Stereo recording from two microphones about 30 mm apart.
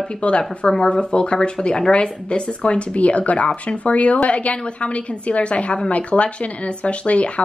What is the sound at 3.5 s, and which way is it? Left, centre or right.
Speech, left.